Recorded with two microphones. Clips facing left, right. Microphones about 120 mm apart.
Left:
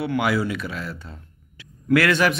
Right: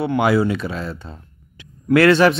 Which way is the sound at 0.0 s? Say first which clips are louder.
Right 5 dB; 25° right (ahead or behind).